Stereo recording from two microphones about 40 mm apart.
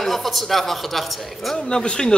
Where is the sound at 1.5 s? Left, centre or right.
Left.